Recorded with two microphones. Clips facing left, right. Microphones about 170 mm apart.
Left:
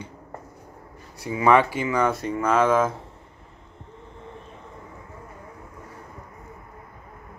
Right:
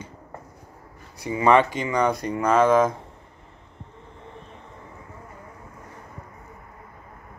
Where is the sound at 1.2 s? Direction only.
5° left (ahead or behind).